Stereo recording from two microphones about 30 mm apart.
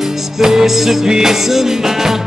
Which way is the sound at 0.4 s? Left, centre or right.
Centre.